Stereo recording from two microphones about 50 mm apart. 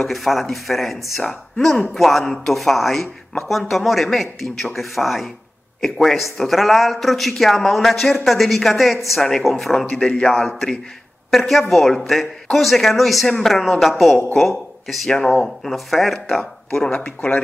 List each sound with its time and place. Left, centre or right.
0.1 s a woman's voice: centre
15.0 s speech: centre
15.4 s speech: centre
16.9 s speech: left